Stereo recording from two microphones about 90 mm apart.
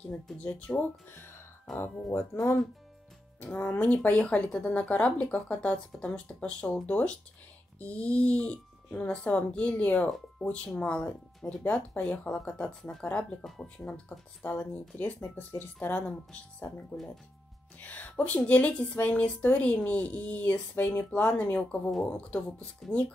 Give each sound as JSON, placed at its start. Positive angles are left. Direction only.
{"t": 0.4, "sound": "speech", "side_deg": 15}
{"t": 2.3, "sound": "speech", "side_deg": 35}
{"t": 3.5, "sound": "speech", "side_deg": 20}
{"t": 16.9, "sound": "speech", "side_deg": 5}
{"t": 17.7, "sound": "speech", "side_deg": 20}